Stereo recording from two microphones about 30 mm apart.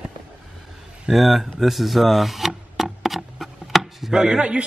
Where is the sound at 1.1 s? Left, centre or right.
Centre.